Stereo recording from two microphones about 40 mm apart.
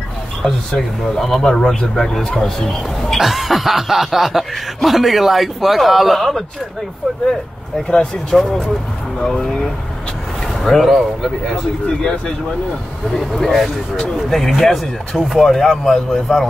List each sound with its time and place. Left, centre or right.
0.4 s a man's voice: centre
3.2 s speech: centre
7.9 s a man's voice: centre
8.4 s speech: centre
9.2 s a man's voice: centre
10.6 s speech: centre
12.0 s speech: centre
13.2 s speech: centre